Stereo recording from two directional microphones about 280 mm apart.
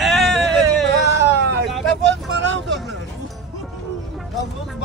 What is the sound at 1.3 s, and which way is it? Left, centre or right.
Vehicle, right.